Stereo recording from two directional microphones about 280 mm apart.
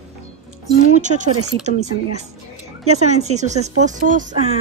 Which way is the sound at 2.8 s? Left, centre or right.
Right.